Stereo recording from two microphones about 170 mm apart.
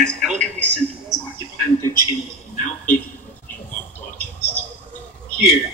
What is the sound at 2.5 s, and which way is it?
Television, 50° left (ahead or behind).